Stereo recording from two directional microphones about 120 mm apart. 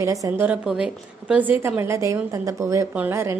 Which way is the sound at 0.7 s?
10° right (ahead or behind).